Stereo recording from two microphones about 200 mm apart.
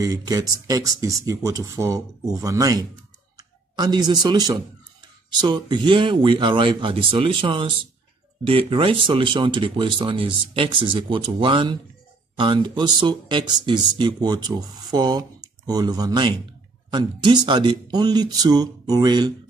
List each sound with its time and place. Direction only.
0.0 s speech: 20° right (ahead or behind)